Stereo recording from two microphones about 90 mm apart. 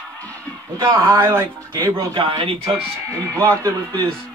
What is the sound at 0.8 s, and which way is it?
Speech, 60° right (ahead or behind).